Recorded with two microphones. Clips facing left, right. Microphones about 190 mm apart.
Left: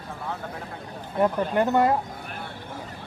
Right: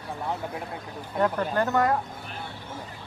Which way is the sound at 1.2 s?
15° left (ahead or behind).